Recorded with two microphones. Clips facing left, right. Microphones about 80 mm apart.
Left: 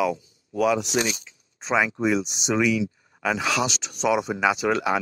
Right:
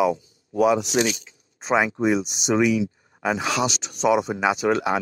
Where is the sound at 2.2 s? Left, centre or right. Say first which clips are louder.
Right 1 dB; right.